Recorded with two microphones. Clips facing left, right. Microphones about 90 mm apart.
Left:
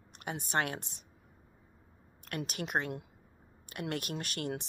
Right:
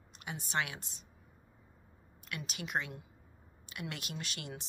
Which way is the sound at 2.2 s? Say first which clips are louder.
Left 5 dB; 55° left (ahead or behind).